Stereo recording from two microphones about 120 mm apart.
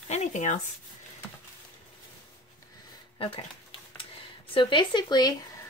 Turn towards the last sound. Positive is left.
turn(degrees=35)  # may be behind; listen again after turning